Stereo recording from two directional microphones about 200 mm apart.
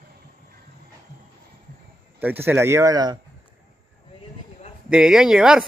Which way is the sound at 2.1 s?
10° right (ahead or behind).